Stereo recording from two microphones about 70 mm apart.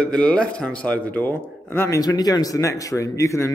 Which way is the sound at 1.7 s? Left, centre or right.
Left.